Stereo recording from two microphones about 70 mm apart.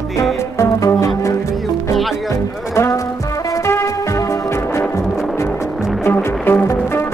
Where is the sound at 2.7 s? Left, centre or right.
Left.